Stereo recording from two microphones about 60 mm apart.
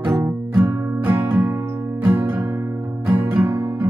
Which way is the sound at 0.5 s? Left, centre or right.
Right.